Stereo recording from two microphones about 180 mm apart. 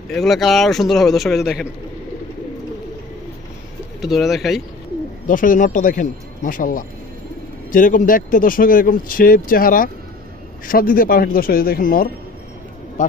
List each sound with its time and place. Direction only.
0.1 s a man's voice: centre (ahead or behind)
4.0 s a man's voice: centre (ahead or behind)
5.2 s speech: 45° left (ahead or behind)